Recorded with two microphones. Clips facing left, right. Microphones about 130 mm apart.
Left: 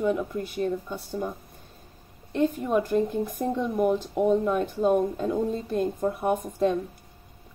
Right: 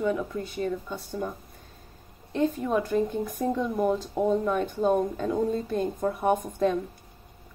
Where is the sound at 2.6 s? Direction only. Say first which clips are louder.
Left 1 dB; 10° left (ahead or behind).